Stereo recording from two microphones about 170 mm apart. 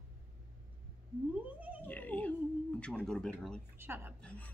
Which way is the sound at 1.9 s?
10° left (ahead or behind).